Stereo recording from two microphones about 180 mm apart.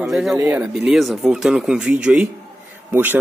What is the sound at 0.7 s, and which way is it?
Speech, 5° right (ahead or behind).